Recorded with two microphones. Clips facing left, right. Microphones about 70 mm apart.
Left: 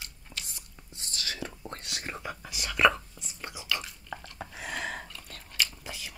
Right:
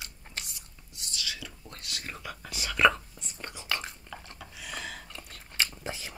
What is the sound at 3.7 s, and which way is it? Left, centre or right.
Chewing, right.